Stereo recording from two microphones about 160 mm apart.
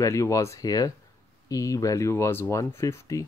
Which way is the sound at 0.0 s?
20° left (ahead or behind).